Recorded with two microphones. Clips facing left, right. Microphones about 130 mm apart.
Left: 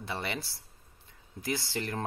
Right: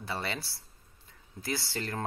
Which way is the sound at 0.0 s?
20° left (ahead or behind).